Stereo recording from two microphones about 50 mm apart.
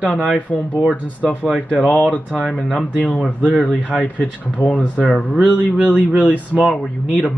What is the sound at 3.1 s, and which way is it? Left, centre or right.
Speech, left.